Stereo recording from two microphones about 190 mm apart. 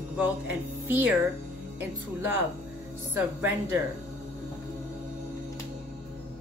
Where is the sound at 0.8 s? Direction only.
10° right (ahead or behind).